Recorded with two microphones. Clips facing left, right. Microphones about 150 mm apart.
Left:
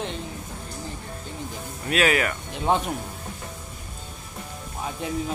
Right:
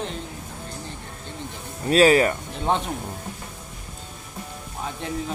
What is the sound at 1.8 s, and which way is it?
Speech, 35° right (ahead or behind).